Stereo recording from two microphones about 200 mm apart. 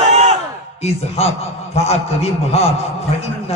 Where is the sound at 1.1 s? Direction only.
30° left (ahead or behind).